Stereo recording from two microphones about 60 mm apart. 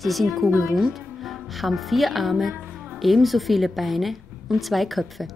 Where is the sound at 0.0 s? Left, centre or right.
Centre.